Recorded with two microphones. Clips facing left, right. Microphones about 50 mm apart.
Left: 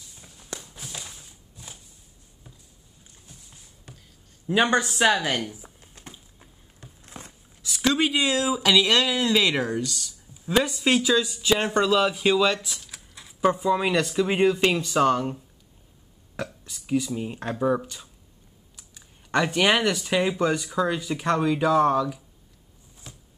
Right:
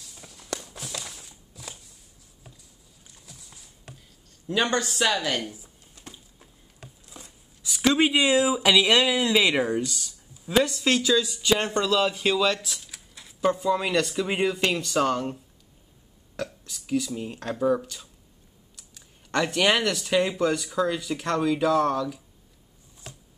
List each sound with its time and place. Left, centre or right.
0.1 s walk: right
0.7 s walk: right
3.3 s horse: right
4.5 s speech: centre
7.1 s a sound: left
7.6 s speech: centre
10.4 s speech: centre
12.8 s a sound: centre
13.6 s speech: centre
16.6 s speech: centre